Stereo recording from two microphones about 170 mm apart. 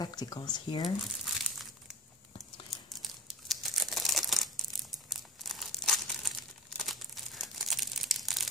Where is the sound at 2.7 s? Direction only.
Centre (ahead or behind).